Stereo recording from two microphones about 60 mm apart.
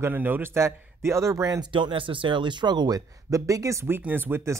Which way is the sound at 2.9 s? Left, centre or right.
Right.